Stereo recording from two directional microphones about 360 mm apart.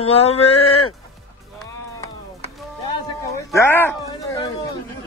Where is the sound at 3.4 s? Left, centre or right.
Centre.